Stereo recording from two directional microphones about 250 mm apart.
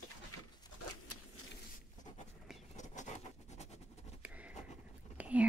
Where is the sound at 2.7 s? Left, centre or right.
Left.